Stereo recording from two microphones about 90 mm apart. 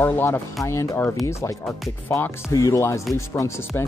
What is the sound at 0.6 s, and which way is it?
Speech, 35° left (ahead or behind).